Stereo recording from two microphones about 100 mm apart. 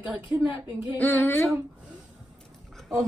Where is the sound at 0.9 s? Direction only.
20° left (ahead or behind).